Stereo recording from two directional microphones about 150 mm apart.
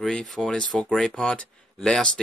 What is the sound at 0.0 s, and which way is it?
Speech, centre (ahead or behind).